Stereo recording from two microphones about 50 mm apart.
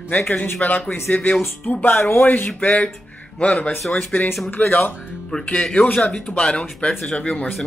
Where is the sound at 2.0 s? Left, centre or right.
Left.